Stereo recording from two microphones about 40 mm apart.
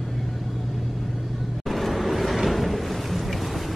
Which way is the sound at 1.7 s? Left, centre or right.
Centre.